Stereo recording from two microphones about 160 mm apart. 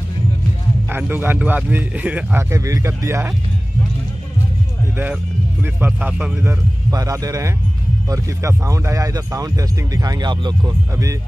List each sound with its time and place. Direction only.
0.8 s speech: 10° right (ahead or behind)
4.9 s speech: 10° right (ahead or behind)